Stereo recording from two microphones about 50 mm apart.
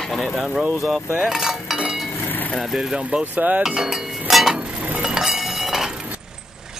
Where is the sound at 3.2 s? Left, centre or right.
Right.